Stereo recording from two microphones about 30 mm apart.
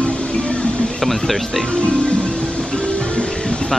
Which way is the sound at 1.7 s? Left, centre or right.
Left.